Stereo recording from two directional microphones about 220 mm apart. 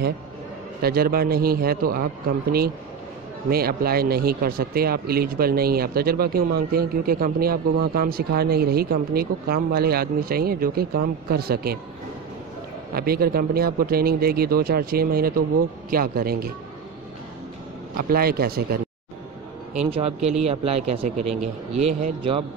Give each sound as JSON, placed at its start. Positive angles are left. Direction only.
{"t": 0.8, "sound": "a man's voice", "side_deg": -45}
{"t": 12.9, "sound": "a man's voice", "side_deg": -45}
{"t": 18.0, "sound": "a man's voice", "side_deg": -45}
{"t": 19.9, "sound": "speech", "side_deg": -25}